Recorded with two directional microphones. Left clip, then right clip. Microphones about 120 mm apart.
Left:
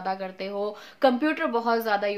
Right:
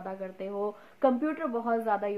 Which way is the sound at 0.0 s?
10° left (ahead or behind).